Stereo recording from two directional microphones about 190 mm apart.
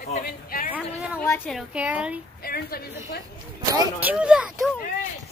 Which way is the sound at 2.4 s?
55° left (ahead or behind).